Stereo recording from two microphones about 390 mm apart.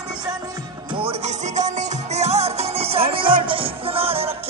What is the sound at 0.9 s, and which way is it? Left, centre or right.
Music, centre.